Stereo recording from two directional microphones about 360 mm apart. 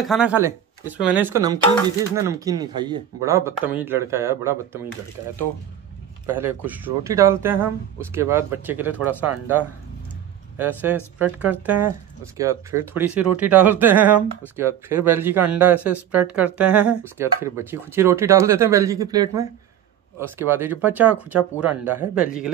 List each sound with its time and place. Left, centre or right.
0.0 s speech: centre
6.4 s speech: centre
9.0 s speech: right
11.1 s speech: centre